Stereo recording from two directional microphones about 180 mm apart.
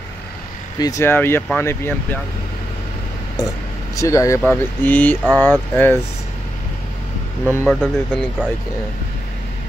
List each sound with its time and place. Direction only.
0.7 s speech: 20° left (ahead or behind)
3.9 s speech: 20° left (ahead or behind)
7.4 s speech: 10° left (ahead or behind)